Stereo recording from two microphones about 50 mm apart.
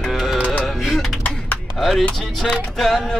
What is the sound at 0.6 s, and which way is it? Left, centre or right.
Music, centre.